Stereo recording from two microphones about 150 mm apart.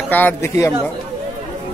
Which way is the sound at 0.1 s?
10° left (ahead or behind).